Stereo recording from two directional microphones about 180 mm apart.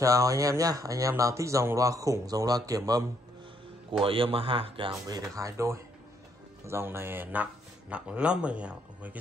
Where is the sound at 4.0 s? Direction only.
30° right (ahead or behind).